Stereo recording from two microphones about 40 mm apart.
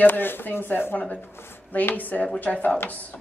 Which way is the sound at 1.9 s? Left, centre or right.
Left.